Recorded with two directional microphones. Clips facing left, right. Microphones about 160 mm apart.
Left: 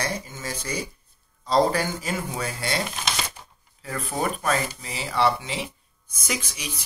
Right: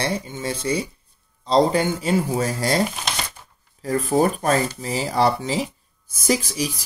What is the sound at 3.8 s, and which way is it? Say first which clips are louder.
Speech: right 9 dB; 40° right (ahead or behind).